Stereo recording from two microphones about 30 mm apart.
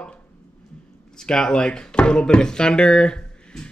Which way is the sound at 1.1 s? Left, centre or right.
Left.